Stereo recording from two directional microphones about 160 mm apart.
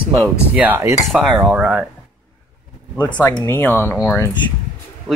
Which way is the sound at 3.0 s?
25° left (ahead or behind).